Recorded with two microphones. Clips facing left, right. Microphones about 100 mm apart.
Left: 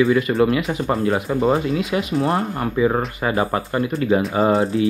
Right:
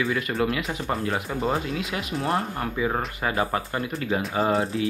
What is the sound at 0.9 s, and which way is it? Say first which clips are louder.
Speech: left 7 dB; 30° left (ahead or behind).